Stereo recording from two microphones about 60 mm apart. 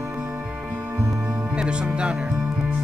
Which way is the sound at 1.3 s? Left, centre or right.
Centre.